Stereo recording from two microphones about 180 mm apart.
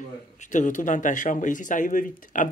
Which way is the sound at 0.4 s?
45° left (ahead or behind).